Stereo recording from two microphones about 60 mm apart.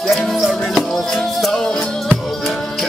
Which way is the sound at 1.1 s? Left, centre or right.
Centre.